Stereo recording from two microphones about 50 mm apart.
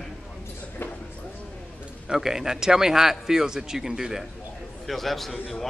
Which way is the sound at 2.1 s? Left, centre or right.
Centre.